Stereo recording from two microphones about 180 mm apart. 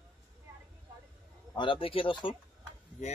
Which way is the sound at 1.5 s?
30° left (ahead or behind).